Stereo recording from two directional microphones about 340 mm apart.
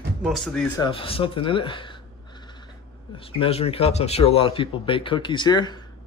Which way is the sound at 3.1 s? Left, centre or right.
Centre.